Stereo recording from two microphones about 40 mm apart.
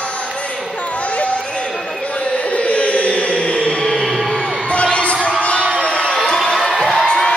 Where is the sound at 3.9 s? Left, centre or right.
Centre.